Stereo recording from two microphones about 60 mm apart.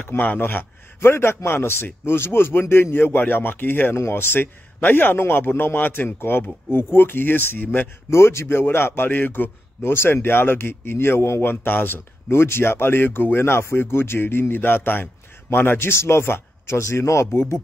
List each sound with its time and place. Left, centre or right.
0.0 s a man's voice: left
8.1 s a man's voice: left
17.3 s a man's voice: left